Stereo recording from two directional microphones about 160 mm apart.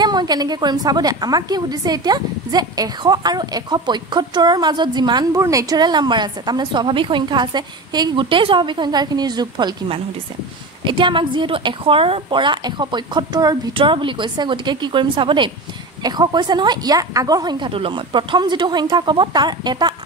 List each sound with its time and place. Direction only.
0.0 s a woman's voice: 25° right (ahead or behind)